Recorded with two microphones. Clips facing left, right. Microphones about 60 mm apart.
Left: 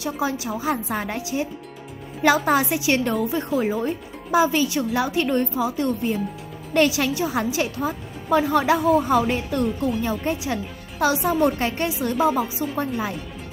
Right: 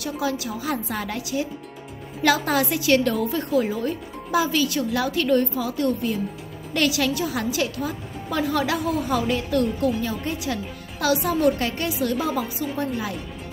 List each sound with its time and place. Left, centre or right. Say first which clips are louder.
0.0 s a woman's voice: left 1 dB; left